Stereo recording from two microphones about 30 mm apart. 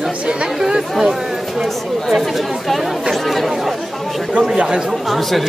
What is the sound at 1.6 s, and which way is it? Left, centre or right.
Speech, centre.